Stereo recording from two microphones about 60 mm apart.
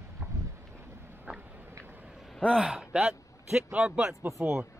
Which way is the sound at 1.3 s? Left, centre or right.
Right.